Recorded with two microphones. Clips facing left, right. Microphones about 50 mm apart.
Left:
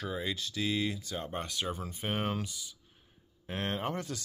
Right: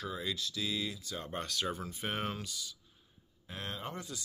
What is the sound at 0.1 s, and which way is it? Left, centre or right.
Speech, left.